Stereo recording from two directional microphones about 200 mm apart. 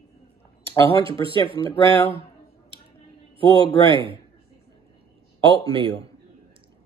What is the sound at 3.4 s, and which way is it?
Speech, 25° right (ahead or behind).